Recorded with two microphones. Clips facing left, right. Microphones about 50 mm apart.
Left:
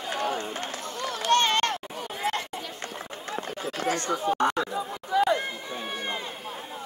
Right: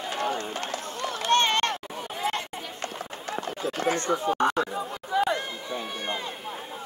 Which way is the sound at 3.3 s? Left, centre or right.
Right.